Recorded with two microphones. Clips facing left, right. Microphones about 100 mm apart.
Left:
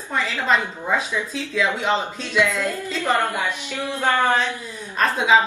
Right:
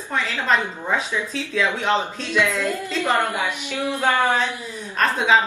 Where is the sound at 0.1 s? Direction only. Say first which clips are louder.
Even; centre (ahead or behind).